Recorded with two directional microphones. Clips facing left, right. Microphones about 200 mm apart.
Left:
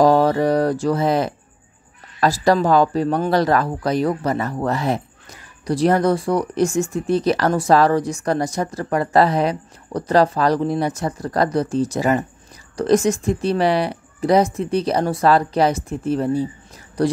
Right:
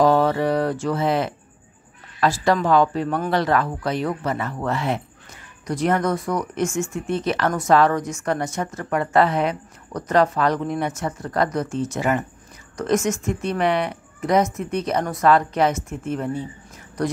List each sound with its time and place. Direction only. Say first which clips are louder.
0.0 s speech: left 3 dB; 40° left (ahead or behind)